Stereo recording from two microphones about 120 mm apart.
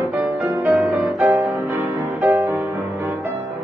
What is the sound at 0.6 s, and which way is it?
Music, centre (ahead or behind).